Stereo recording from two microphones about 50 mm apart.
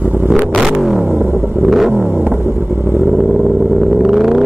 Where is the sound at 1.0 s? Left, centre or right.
Right.